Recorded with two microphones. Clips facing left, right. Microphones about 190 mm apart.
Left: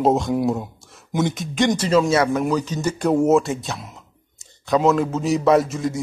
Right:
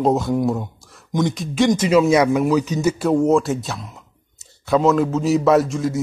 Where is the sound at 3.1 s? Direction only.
5° left (ahead or behind).